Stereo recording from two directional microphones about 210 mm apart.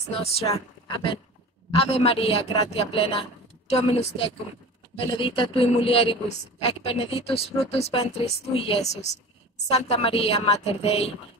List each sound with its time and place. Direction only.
0.2 s a man's voice: 30° left (ahead or behind)